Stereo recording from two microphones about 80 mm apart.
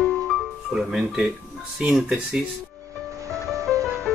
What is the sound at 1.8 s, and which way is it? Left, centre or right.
Speech, centre.